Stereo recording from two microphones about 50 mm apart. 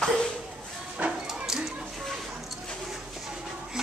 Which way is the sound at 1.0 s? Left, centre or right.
Right.